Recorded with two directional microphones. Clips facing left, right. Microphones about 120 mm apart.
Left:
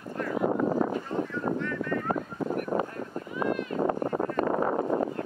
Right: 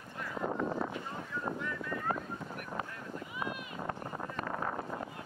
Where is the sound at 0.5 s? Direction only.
45° left (ahead or behind).